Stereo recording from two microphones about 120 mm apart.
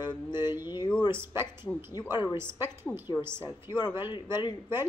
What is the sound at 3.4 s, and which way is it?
Speech, 40° left (ahead or behind).